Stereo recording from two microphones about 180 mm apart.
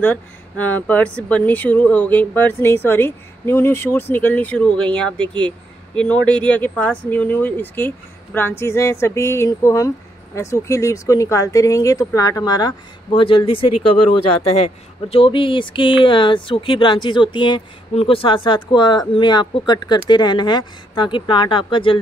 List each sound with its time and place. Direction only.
0.0 s speech: 10° left (ahead or behind); by 21.9 s 25° left (ahead or behind)